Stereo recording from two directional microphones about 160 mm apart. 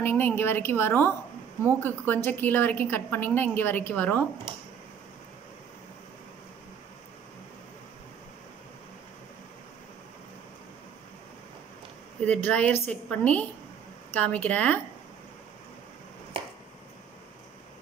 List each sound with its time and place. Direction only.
0.0 s a woman's voice: 15° left (ahead or behind)
12.2 s a woman's voice: 10° left (ahead or behind)
16.3 s finger snapping: 35° right (ahead or behind)